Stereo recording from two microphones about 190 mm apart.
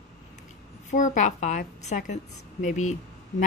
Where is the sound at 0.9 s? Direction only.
40° left (ahead or behind).